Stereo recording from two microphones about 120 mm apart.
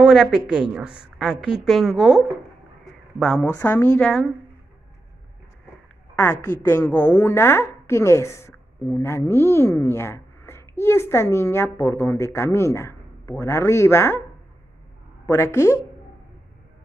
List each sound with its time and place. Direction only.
0.0 s a woman's voice: 5° right (ahead or behind)
2.8 s a sound: centre (ahead or behind)
3.6 s speech: 15° left (ahead or behind)
6.7 s a woman's voice: 15° left (ahead or behind)
15.2 s a woman's voice: 25° left (ahead or behind)